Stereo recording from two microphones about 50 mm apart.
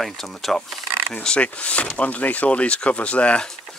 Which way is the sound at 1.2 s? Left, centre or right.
Left.